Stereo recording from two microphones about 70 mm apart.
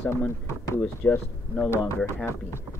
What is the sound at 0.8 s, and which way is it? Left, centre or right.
Speech, left.